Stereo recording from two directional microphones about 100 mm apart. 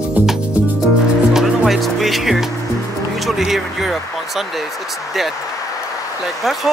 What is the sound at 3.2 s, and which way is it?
Speech, centre (ahead or behind).